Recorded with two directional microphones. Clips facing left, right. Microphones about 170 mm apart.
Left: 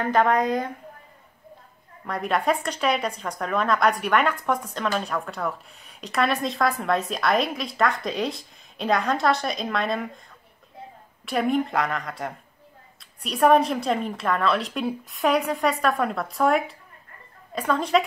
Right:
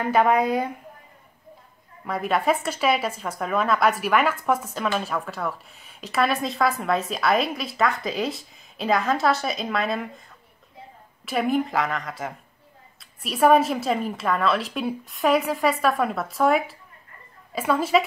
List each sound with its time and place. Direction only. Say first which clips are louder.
0.0 s a woman's voice: right 1 dB; 10° right (ahead or behind)
2.0 s speech: right 1 dB; centre (ahead or behind)
11.2 s speech: even; centre (ahead or behind)